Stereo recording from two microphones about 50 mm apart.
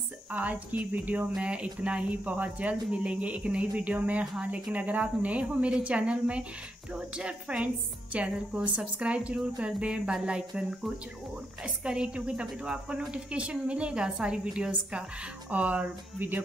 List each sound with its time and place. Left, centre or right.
0.3 s a woman's voice: right
11.6 s a woman's voice: centre
16.2 s speech: right